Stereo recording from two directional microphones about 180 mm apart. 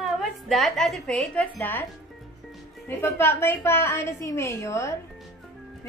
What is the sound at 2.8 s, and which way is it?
A woman's voice, 15° left (ahead or behind).